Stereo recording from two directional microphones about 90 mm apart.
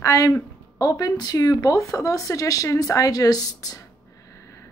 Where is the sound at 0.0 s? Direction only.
35° left (ahead or behind).